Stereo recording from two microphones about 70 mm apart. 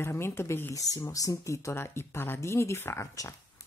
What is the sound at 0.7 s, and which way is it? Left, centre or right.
Speech, left.